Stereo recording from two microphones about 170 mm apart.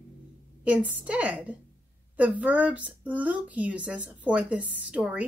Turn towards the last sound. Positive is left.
turn(degrees=-10)  # may be behind; listen again after turning